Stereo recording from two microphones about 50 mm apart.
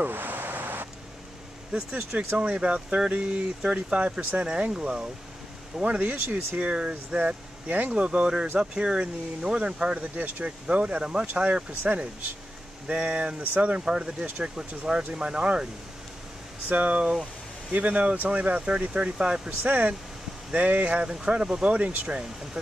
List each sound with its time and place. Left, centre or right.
0.0 s a sound: right
1.7 s speech: centre
11.8 s speech: right
13.8 s speech: centre
16.6 s speech: right
18.8 s speech: right
19.6 s speech: right